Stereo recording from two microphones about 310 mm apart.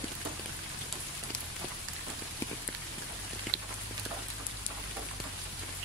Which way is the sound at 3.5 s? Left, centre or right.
Right.